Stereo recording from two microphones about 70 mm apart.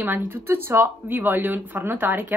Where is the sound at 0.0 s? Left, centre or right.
Right.